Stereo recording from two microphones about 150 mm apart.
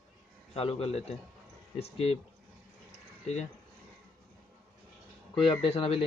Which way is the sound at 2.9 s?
45° left (ahead or behind).